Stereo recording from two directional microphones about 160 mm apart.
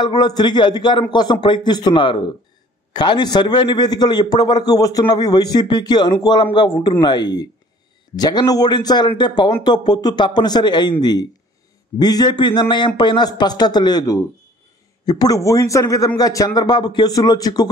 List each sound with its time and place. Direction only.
0.0 s a man's voice: 25° left (ahead or behind)